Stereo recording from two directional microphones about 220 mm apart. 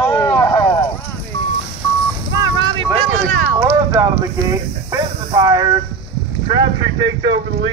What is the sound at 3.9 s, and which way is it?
Speech, 15° right (ahead or behind).